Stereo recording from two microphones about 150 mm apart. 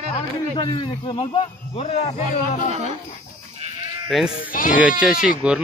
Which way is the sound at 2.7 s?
45° right (ahead or behind).